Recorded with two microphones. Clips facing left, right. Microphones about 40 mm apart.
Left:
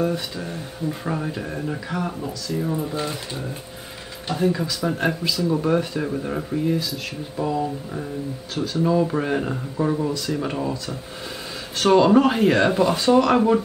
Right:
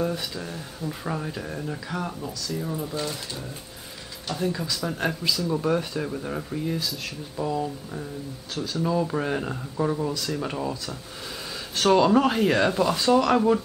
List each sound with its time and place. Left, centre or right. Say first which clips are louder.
0.0 s speech: left 4 dB; centre